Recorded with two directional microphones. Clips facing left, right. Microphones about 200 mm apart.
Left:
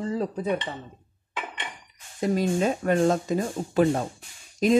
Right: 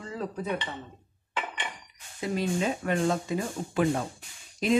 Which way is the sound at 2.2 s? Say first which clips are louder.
Left 5 dB; 45° left (ahead or behind).